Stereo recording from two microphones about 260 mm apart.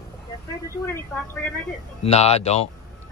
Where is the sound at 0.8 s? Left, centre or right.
Centre.